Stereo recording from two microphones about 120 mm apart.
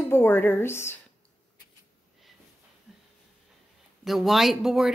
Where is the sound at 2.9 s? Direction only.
Centre (ahead or behind).